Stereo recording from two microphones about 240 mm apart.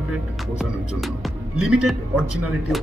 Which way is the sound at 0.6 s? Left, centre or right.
Centre.